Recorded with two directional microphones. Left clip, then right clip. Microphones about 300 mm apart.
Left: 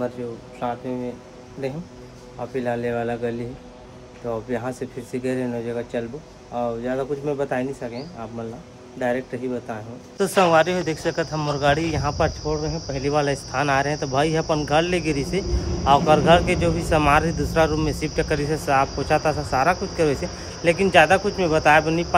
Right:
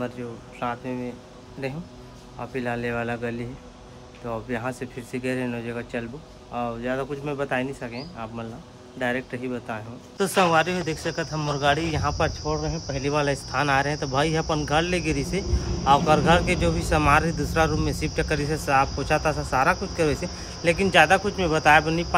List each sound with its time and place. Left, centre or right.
0.2 s speech: centre